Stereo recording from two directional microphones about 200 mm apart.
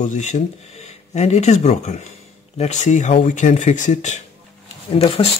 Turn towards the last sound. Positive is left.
turn(degrees=30)  # may be behind; listen again after turning